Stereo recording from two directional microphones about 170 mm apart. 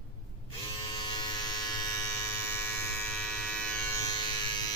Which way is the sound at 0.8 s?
25° left (ahead or behind).